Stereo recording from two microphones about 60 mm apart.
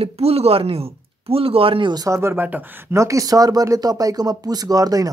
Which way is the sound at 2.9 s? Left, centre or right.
Right.